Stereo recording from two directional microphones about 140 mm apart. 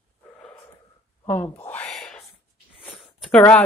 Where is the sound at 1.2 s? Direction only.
15° left (ahead or behind).